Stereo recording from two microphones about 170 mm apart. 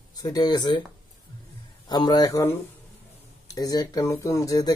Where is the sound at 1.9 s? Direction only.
25° left (ahead or behind).